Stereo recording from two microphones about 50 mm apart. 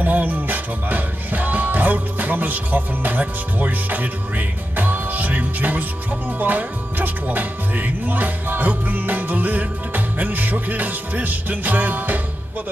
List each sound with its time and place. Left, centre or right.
0.0 s music: right